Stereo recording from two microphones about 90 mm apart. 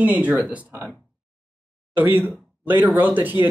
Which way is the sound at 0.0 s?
15° right (ahead or behind).